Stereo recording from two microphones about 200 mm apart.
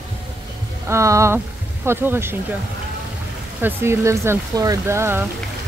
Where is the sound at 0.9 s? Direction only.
15° right (ahead or behind).